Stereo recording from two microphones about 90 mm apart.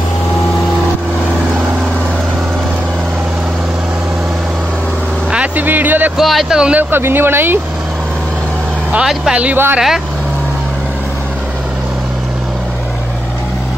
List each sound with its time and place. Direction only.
5.3 s a sound: 15° right (ahead or behind)
6.1 s speech: centre (ahead or behind)
6.8 s speech: 25° right (ahead or behind)
8.9 s speech: 10° right (ahead or behind)
9.4 s speech: 20° right (ahead or behind)